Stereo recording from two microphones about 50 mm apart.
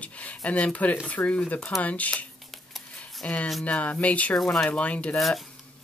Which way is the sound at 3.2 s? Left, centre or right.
Left.